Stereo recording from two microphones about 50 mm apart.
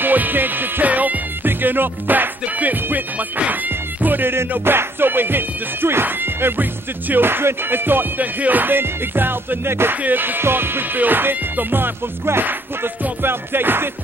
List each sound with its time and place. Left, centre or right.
0.0 s music: right